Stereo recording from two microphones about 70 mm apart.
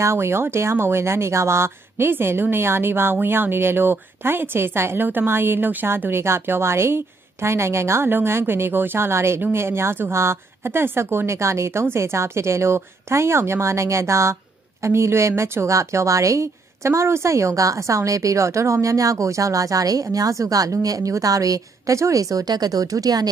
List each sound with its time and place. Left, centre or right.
0.0 s speech: right